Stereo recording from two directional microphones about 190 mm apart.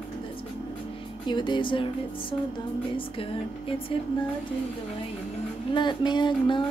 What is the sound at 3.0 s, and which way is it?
Music, 30° left (ahead or behind).